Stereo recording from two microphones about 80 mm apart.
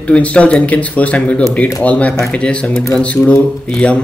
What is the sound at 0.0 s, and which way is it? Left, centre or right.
Speech, centre.